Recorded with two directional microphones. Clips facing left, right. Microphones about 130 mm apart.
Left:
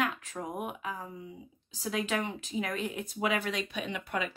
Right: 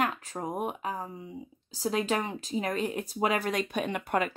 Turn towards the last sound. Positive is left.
turn(degrees=-50)  # may be behind; listen again after turning